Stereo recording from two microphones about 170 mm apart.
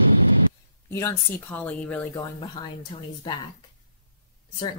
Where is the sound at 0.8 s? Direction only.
15° left (ahead or behind).